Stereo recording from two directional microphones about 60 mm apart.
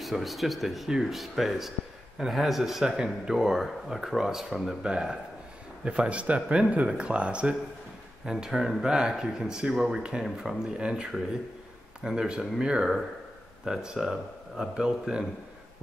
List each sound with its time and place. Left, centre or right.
0.0 s speech: centre
8.3 s speech: centre
10.4 s speech: centre
10.8 s speech: centre